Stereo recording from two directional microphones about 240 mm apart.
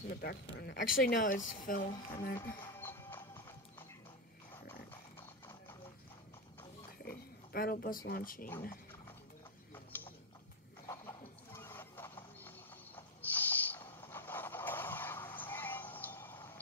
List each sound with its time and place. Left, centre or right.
0.1 s speech: left
2.8 s music: centre
7.1 s speech: left
9.9 s a sound: centre
12.4 s owl: centre